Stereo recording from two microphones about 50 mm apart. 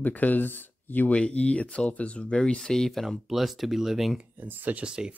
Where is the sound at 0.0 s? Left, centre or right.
Left.